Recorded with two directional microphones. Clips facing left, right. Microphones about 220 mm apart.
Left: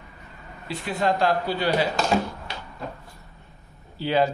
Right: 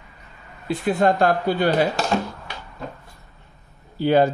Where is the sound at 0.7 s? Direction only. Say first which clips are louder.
Right 6 dB; 50° right (ahead or behind).